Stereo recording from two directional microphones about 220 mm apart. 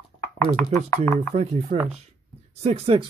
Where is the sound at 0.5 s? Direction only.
5° left (ahead or behind).